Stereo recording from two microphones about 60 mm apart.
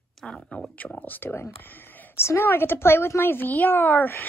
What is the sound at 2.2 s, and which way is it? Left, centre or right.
A woman's voice, left.